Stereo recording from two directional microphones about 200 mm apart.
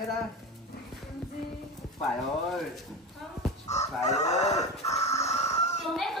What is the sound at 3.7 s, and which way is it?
Chicken, 35° left (ahead or behind).